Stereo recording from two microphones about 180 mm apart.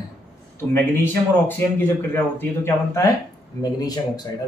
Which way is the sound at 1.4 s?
10° left (ahead or behind).